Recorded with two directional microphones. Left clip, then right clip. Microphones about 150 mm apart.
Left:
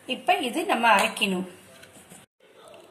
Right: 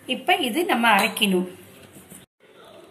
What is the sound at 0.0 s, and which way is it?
Speech, 45° left (ahead or behind).